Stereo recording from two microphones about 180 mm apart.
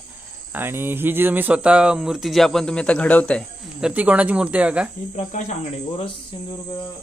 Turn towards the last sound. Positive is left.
turn(degrees=40)  # may be behind; listen again after turning